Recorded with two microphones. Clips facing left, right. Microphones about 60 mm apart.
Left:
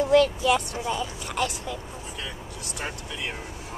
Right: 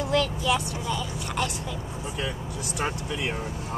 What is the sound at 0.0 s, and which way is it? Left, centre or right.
Speech, left.